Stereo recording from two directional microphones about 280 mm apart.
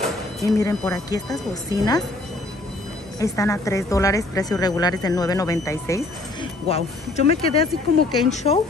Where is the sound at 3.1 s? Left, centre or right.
Centre.